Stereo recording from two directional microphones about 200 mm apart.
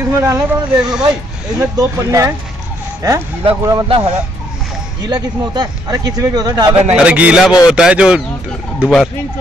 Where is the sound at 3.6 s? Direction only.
25° right (ahead or behind).